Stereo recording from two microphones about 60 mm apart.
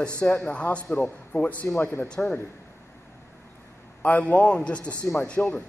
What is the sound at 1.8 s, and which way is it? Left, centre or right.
Speech, left.